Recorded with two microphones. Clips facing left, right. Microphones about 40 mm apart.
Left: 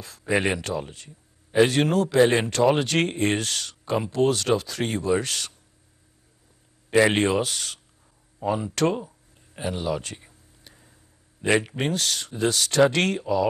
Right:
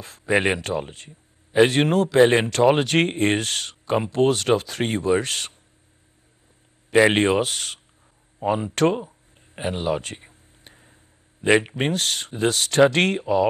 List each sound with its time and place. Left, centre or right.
0.3 s speech: right
7.1 s speech: right
9.6 s a sound: right
11.4 s speech: right